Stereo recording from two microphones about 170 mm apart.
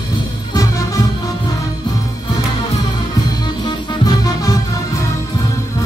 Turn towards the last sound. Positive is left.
turn(degrees=25)  # may be behind; listen again after turning